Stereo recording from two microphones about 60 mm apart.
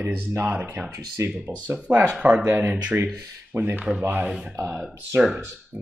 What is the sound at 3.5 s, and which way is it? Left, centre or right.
Speech, right.